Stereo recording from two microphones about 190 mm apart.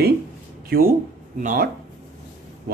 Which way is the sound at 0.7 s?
50° right (ahead or behind).